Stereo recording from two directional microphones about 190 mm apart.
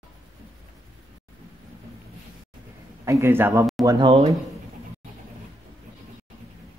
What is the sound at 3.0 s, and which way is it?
Speech, 15° right (ahead or behind).